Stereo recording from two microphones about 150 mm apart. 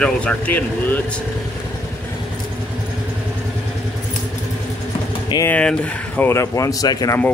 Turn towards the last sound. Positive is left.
turn(degrees=25)  # may be behind; listen again after turning